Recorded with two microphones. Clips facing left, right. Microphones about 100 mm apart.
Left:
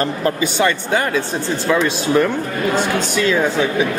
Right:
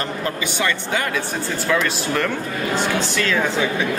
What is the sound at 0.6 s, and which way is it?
Speech, 30° left (ahead or behind).